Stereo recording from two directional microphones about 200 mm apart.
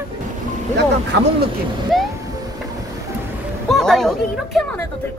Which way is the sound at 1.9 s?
Centre (ahead or behind).